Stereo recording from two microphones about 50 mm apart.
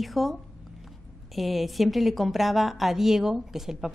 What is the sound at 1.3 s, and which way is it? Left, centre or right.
A woman's voice, centre.